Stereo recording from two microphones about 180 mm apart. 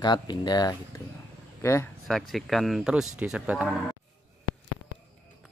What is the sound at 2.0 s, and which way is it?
Speech, centre (ahead or behind).